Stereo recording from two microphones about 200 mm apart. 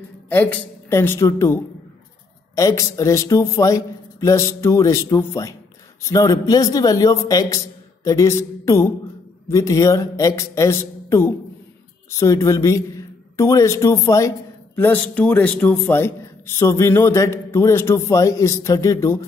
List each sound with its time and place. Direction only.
0.3 s a man's voice: 10° left (ahead or behind)